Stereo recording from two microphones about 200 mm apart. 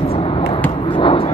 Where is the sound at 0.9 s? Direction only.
25° left (ahead or behind).